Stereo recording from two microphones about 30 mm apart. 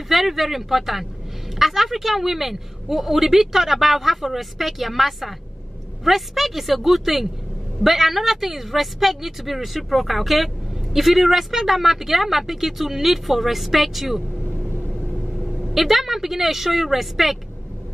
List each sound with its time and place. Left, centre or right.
0.1 s speech: centre
15.3 s vehicle: centre
15.7 s speech: centre